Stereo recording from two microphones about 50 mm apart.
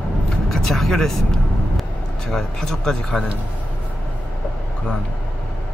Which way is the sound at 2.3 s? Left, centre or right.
Centre.